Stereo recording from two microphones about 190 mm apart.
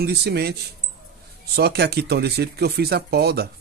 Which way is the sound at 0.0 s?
60° right (ahead or behind).